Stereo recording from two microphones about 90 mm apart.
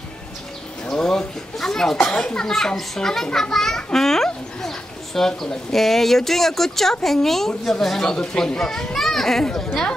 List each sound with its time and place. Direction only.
0.8 s speech: 5° left (ahead or behind)